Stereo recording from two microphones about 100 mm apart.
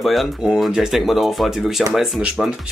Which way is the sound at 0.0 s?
Centre (ahead or behind).